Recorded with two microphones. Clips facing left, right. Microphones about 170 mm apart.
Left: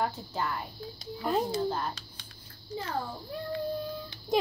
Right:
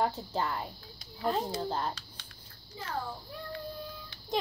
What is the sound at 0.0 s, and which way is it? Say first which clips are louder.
Speech: right 1 dB; 30° right (ahead or behind).